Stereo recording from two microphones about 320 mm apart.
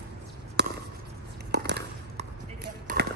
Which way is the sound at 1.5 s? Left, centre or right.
Right.